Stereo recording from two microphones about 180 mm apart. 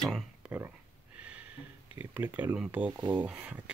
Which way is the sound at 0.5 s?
10° right (ahead or behind).